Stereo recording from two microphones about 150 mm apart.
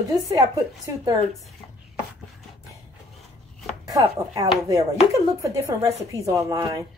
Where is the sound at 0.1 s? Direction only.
25° right (ahead or behind).